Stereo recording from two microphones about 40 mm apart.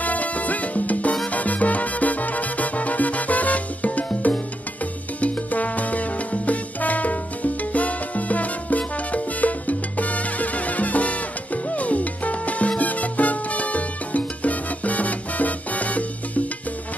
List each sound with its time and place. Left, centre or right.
0.0 s salsa music: left
1.3 s music: left
5.5 s music: left